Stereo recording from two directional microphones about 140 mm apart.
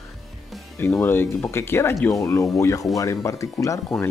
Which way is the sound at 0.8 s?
15° left (ahead or behind).